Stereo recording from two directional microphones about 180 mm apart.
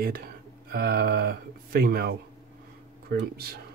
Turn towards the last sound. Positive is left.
turn(degrees=-55)  # may be behind; listen again after turning